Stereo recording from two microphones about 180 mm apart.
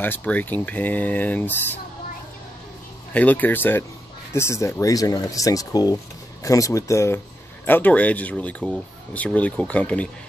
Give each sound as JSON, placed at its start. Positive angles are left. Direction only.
{"t": 0.0, "sound": "speech", "side_deg": 10}
{"t": 3.1, "sound": "speech", "side_deg": 10}